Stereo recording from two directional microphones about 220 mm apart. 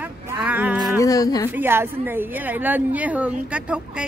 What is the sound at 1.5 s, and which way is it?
A woman's voice, 10° right (ahead or behind).